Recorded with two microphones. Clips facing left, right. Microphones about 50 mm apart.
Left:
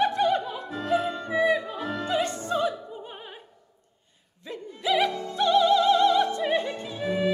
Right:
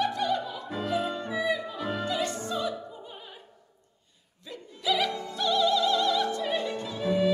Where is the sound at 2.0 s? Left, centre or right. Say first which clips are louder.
Left 3 dB; left.